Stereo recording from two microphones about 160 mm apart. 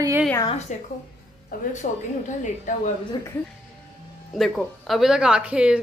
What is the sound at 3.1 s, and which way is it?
Speech, 25° left (ahead or behind).